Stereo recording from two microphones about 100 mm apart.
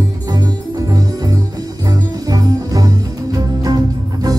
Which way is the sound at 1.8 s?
35° right (ahead or behind).